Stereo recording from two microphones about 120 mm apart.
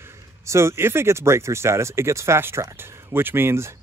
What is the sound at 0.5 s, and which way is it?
Speech, 20° right (ahead or behind).